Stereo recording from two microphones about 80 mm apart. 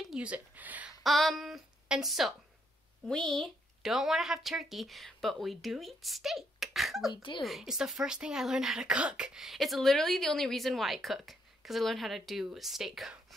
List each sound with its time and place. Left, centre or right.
0.0 s speech: centre
1.0 s speech: centre
7.2 s speech: left
7.4 s speech: centre